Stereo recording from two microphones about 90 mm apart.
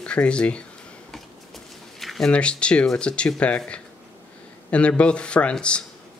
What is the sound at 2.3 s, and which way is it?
Speech, 10° left (ahead or behind).